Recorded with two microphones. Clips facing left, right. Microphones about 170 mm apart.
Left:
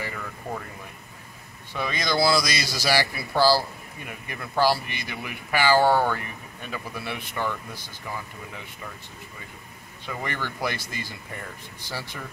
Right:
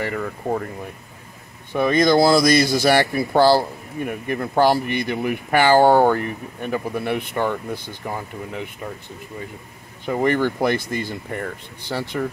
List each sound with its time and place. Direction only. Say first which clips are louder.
0.0 s speech: right 9 dB; 50° right (ahead or behind)
1.7 s speech: right 11 dB; 50° right (ahead or behind)
10.0 s speech: right 13 dB; 45° right (ahead or behind)